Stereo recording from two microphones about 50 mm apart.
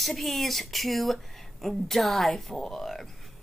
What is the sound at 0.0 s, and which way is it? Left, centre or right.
Speech, centre.